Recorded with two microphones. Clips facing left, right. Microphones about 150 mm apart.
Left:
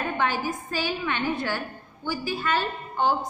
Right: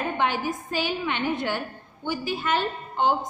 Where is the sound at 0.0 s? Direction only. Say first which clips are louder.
Right 1 dB; 20° right (ahead or behind).